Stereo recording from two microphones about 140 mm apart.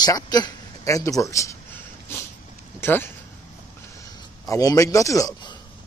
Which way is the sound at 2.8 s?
15° left (ahead or behind).